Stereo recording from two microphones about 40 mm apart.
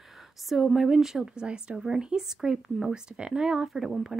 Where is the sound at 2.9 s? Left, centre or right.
Right.